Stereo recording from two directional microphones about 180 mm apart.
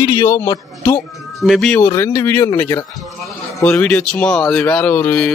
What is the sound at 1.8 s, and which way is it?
Speech, 15° left (ahead or behind).